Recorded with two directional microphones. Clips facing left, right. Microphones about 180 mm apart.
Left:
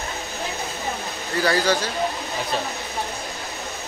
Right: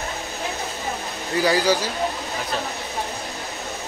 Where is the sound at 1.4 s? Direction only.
10° right (ahead or behind).